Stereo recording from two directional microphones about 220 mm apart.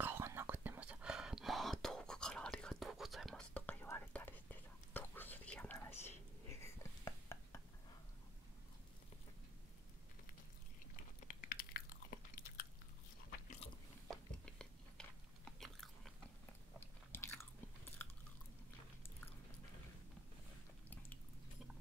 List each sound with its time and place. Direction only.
0.0 s whispering: 10° right (ahead or behind); by 7.6 s 15° left (ahead or behind)
11.2 s biting: 40° left (ahead or behind)
14.0 s chewing: 5° left (ahead or behind)
16.8 s biting: 10° left (ahead or behind)
18.0 s chewing: 10° left (ahead or behind)